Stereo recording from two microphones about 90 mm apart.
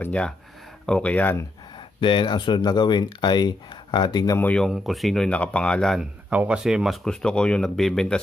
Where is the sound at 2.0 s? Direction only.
65° left (ahead or behind).